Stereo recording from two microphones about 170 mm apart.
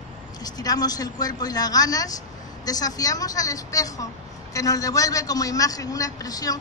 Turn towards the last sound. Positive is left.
turn(degrees=20)  # may be behind; listen again after turning